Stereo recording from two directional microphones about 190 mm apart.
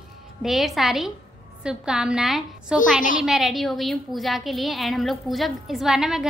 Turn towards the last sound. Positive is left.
turn(degrees=-5)  # may be behind; listen again after turning